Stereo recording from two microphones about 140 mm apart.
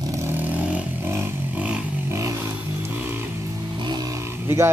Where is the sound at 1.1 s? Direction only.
10° right (ahead or behind).